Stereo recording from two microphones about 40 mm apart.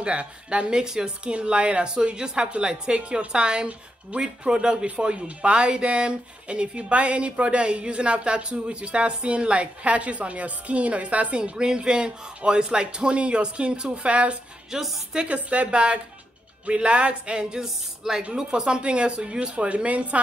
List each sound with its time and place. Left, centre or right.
0.0 s speech: right
4.8 s speech: right
11.3 s speech: right
14.7 s speech: centre
15.1 s a woman's voice: right